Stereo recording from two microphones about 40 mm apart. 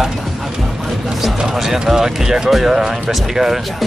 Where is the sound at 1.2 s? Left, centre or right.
Centre.